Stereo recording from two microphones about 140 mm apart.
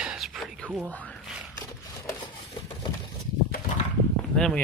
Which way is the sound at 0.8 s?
5° left (ahead or behind).